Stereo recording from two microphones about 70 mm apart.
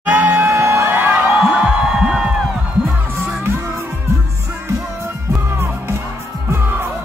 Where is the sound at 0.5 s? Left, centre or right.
Right.